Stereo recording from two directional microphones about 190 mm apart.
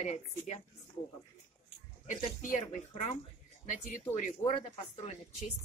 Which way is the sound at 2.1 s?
40° left (ahead or behind).